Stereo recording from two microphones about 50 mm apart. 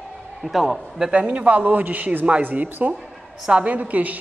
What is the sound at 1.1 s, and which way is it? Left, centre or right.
A woman's voice, right.